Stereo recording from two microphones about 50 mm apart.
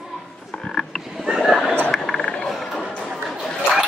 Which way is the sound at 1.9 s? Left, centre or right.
Centre.